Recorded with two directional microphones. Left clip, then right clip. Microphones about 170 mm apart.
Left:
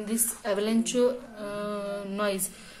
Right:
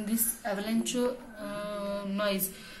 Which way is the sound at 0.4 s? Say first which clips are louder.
Left 8 dB; 35° left (ahead or behind).